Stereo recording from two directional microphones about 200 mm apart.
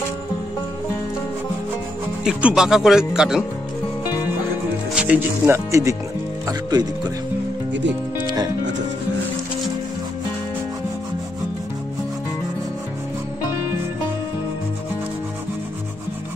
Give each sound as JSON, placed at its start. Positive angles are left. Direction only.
{"t": 2.2, "sound": "speech", "side_deg": -5}
{"t": 4.9, "sound": "speech", "side_deg": -5}
{"t": 8.3, "sound": "music", "side_deg": -20}